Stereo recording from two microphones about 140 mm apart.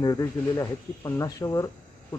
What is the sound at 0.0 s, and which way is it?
Speech, 25° left (ahead or behind).